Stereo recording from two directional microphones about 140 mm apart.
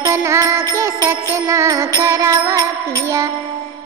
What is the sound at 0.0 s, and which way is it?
Music, 20° right (ahead or behind).